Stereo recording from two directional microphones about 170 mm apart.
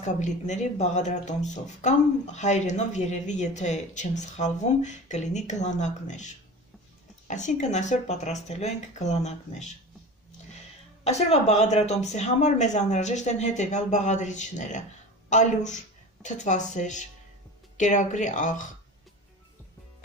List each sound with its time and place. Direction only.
0.0 s speech: 45° left (ahead or behind)
11.1 s speech: 40° left (ahead or behind)